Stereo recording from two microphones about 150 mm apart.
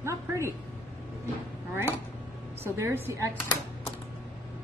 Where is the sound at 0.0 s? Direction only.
20° right (ahead or behind).